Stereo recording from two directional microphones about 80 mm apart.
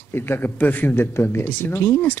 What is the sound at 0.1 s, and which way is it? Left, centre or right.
A man's voice, left.